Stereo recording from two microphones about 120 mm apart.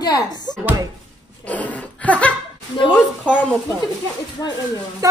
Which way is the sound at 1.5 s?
10° left (ahead or behind).